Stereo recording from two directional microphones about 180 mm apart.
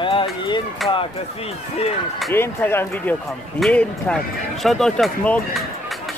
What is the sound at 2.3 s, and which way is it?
Speech, 10° left (ahead or behind).